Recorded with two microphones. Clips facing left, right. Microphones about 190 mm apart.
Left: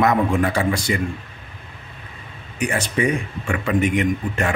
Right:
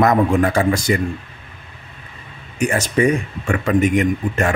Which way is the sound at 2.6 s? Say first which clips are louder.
Right 4 dB; 45° right (ahead or behind).